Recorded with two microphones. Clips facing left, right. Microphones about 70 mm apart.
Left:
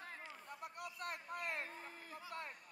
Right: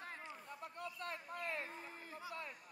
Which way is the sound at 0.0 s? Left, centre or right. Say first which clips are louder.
Right 2 dB; right.